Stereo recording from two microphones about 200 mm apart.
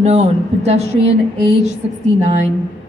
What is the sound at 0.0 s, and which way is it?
A man's voice, 35° right (ahead or behind).